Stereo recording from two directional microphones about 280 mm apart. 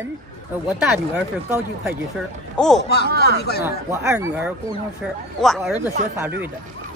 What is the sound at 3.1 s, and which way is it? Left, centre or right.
Speech, right.